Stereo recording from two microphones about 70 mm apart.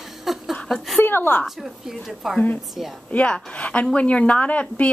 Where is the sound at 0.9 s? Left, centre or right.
Left.